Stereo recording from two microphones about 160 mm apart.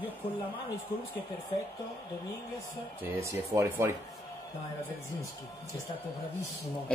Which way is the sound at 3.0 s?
15° right (ahead or behind).